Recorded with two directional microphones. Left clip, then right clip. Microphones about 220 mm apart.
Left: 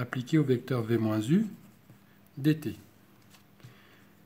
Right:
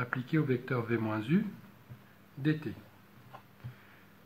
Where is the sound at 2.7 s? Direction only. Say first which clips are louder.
Left 4 dB; 55° left (ahead or behind).